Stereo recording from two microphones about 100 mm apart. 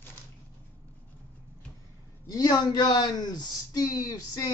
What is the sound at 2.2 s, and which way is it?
A man's voice, 40° left (ahead or behind).